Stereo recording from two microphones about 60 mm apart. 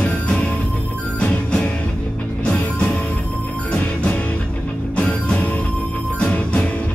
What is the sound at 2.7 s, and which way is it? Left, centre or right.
Music, centre.